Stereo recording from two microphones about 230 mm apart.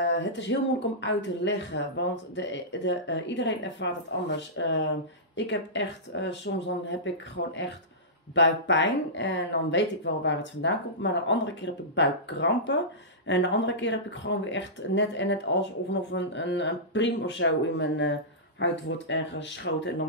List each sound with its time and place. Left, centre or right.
0.0 s speech: left
8.4 s speech: left